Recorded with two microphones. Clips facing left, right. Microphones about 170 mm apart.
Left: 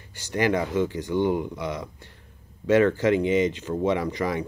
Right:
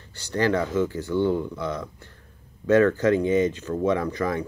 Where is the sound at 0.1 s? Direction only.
15° left (ahead or behind).